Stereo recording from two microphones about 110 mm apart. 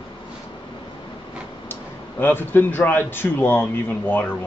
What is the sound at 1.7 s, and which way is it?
A man's voice, 20° left (ahead or behind).